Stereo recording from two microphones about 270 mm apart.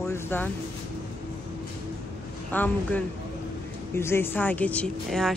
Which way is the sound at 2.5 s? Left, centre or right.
Centre.